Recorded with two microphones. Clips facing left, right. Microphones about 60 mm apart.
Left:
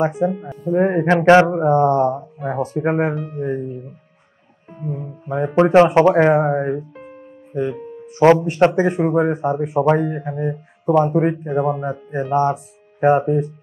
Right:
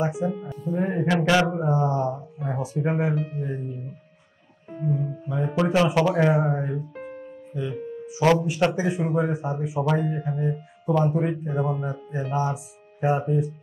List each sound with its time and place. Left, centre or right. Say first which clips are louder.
0.0 s speech: left 7 dB; left
0.3 s speech: left 4 dB; left
0.6 s speech: left 10 dB; left
1.1 s speech: left 10 dB; left
1.7 s speech: left 9 dB; left
4.9 s speech: left 8 dB; left
8.2 s speech: left 8 dB; left
8.7 s speech: left 7 dB; left